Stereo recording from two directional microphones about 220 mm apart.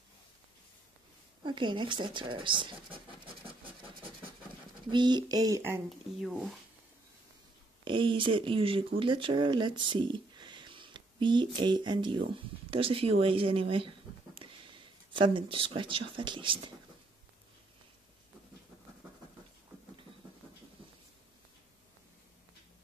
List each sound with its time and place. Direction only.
1.4 s speech: 20° right (ahead or behind)
4.9 s speech: 20° right (ahead or behind)
5.9 s speech: centre (ahead or behind)
7.8 s speech: 20° right (ahead or behind)